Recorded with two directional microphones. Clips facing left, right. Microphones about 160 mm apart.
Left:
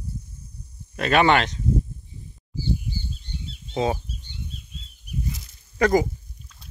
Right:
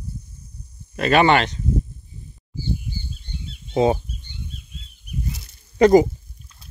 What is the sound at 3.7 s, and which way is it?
Speech, 20° right (ahead or behind).